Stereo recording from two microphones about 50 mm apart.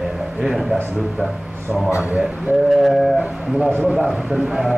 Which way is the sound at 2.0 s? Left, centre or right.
Right.